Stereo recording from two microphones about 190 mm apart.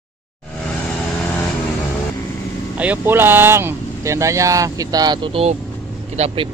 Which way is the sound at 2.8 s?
10° right (ahead or behind).